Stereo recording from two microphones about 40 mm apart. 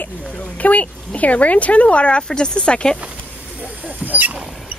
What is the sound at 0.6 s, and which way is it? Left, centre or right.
Speech, left.